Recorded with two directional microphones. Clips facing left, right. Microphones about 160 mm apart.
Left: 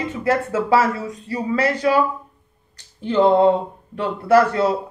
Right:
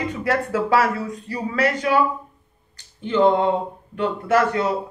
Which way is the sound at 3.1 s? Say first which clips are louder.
Left 3 dB; 35° left (ahead or behind).